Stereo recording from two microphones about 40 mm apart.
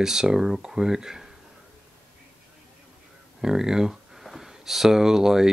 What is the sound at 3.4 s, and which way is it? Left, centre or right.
Speech, centre.